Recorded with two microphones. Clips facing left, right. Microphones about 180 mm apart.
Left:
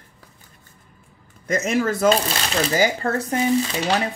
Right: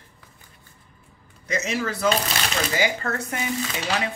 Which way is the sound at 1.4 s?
50° left (ahead or behind).